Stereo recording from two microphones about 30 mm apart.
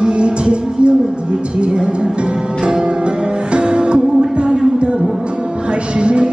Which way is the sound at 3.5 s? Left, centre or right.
Right.